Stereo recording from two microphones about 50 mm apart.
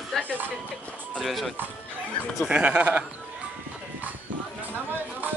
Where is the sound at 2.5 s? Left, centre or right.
Right.